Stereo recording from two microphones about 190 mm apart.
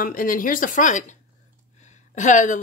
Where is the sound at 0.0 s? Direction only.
45° left (ahead or behind).